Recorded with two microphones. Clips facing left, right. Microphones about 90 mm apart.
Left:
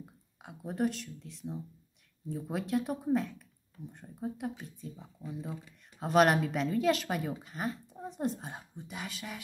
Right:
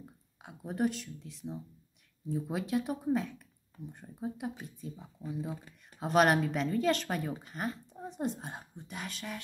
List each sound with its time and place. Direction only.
0.4 s speech: centre (ahead or behind)
5.5 s speech: 45° right (ahead or behind)
5.9 s speech: centre (ahead or behind)